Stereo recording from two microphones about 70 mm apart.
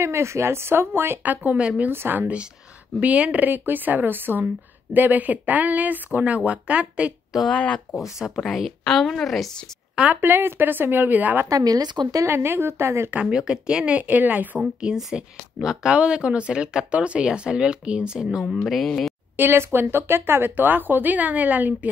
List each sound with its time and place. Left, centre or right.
0.0 s speech: right; by 1.9 s centre
1.9 s speech: right
7.4 s speech: centre
8.4 s a woman's voice: centre
10.2 s speech: right
11.4 s a woman's voice: right
12.3 s speech: right
13.1 s speech: centre
14.8 s a woman's voice: centre
19.3 s speech: right